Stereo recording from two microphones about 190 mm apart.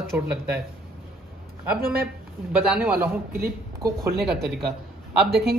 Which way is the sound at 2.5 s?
10° right (ahead or behind).